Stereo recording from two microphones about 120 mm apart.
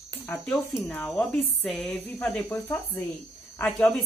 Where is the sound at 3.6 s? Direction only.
15° left (ahead or behind).